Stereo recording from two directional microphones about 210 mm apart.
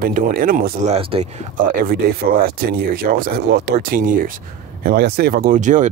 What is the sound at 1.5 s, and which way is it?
Speech, 45° right (ahead or behind).